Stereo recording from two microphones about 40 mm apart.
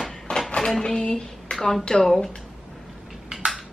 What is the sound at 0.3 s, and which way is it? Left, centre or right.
Dishes, left.